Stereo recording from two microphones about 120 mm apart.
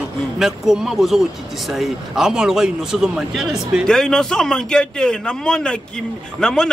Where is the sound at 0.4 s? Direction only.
5° right (ahead or behind).